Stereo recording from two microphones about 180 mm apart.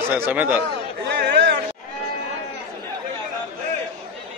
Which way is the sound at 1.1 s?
65° right (ahead or behind).